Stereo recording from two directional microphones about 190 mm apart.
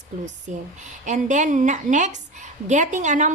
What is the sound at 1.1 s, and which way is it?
A woman's voice, 40° right (ahead or behind).